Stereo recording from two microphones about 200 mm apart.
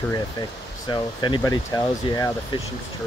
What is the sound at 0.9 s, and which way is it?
Speech, 20° left (ahead or behind).